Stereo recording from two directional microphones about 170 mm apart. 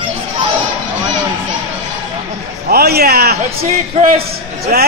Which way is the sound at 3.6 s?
40° right (ahead or behind).